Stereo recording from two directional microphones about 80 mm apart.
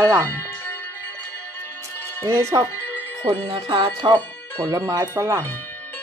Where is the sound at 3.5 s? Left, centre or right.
Right.